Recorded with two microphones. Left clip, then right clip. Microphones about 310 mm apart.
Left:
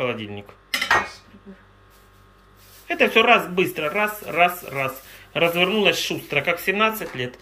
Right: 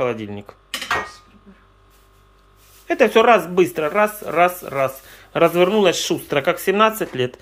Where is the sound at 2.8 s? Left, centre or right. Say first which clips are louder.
Right 3 dB; centre.